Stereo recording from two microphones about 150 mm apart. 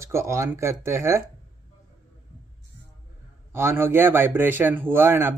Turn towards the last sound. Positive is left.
turn(degrees=-15)  # may be behind; listen again after turning